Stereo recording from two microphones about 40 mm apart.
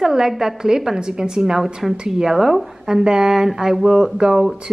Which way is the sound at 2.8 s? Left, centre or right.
Centre.